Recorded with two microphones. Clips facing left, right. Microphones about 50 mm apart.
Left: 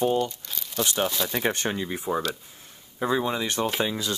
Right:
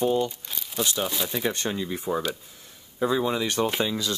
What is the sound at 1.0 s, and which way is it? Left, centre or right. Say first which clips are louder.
Speech: left 2 dB; centre.